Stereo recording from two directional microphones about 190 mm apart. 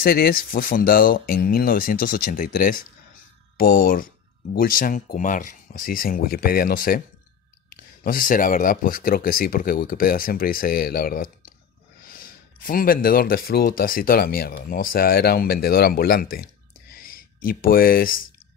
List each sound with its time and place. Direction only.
0.0 s speech: 50° left (ahead or behind)